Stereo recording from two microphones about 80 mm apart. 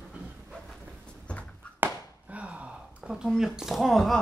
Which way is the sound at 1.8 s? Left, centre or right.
Centre.